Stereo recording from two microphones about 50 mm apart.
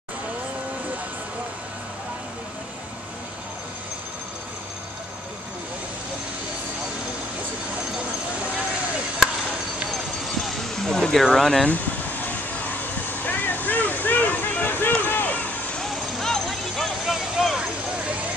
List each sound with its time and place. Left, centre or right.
10.2 s vehicle: centre
11.6 s vehicle: left
15.8 s vehicle: centre
17.0 s vehicle: centre